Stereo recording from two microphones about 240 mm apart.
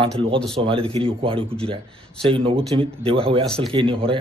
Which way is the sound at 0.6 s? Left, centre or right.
Right.